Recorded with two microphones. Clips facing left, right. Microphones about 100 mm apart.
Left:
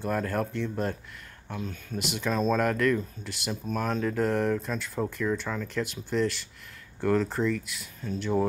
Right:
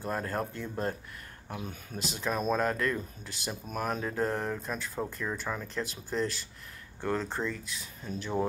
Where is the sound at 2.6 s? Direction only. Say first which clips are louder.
Left 5 dB; 20° right (ahead or behind).